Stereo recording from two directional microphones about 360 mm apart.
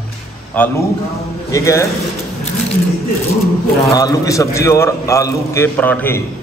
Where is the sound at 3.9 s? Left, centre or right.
Centre.